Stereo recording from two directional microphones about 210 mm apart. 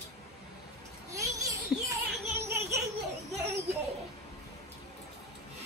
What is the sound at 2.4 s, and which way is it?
Baby laughter, 15° right (ahead or behind).